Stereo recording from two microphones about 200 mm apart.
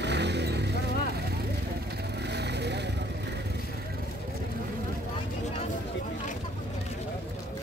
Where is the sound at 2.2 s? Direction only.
55° right (ahead or behind).